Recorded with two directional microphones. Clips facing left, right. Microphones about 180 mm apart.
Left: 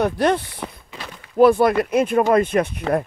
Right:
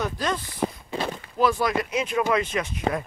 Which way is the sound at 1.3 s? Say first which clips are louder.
Left 9 dB; 55° left (ahead or behind).